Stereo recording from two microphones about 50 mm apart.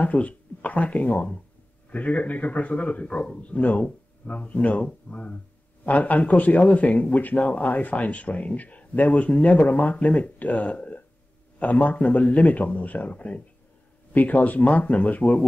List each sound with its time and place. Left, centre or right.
0.0 s a man's voice: left